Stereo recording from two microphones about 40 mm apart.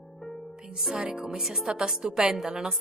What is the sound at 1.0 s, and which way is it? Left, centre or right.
A woman's voice, centre.